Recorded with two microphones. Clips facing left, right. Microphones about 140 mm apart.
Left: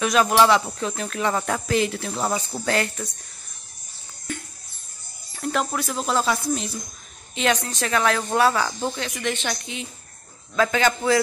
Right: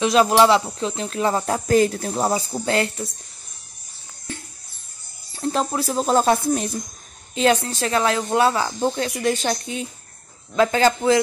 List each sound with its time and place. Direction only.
0.0 s speech: 25° right (ahead or behind)
1.7 s speech: 45° right (ahead or behind)
4.3 s music: 30° right (ahead or behind)
5.3 s speech: 30° right (ahead or behind); by 6.8 s 50° right (ahead or behind)
7.3 s speech: 30° right (ahead or behind)
8.9 s speech: 35° right (ahead or behind)